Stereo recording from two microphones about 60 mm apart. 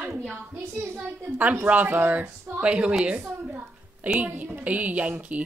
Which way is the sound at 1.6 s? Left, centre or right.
Right.